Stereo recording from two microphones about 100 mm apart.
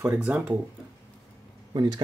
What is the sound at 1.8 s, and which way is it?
Speech, 45° right (ahead or behind).